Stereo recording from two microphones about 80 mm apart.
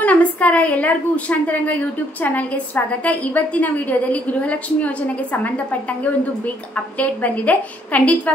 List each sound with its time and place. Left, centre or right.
0.0 s a woman's voice: centre